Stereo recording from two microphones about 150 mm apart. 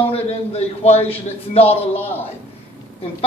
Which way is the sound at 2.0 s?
15° left (ahead or behind).